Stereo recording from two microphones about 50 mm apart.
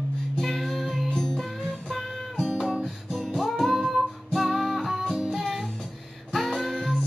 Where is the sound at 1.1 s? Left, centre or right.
Centre.